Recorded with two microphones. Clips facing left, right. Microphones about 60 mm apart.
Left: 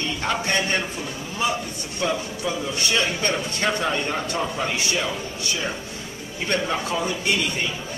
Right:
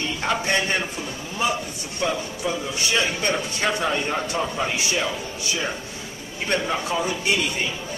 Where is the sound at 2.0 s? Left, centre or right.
Centre.